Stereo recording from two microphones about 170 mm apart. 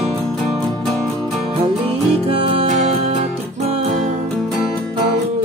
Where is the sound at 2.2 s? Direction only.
35° right (ahead or behind).